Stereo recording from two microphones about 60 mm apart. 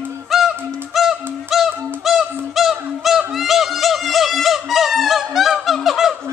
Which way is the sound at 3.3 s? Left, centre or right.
Centre.